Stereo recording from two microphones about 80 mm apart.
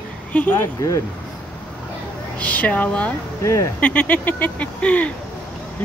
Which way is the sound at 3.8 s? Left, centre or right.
Centre.